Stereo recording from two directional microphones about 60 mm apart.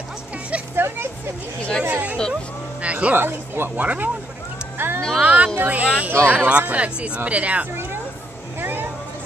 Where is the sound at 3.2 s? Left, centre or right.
Right.